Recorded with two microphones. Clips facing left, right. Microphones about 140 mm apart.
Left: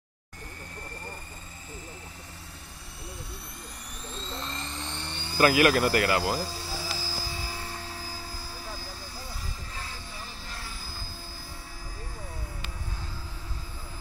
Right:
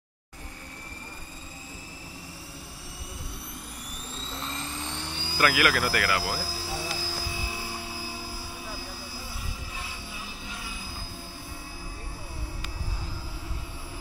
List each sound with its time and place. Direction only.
4.2 s helicopter: 5° right (ahead or behind)
5.4 s speech: 30° left (ahead or behind)
6.4 s helicopter: centre (ahead or behind)
9.8 s train: 5° right (ahead or behind)